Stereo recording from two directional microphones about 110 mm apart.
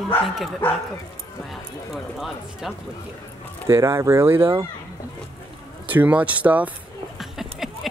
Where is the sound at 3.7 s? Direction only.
25° right (ahead or behind).